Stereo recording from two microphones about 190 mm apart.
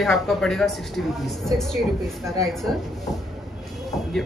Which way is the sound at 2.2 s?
15° right (ahead or behind).